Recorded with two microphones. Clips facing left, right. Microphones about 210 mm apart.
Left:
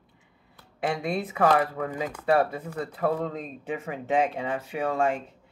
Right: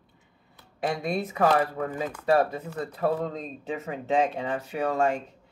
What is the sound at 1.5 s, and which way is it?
Speech, 30° right (ahead or behind).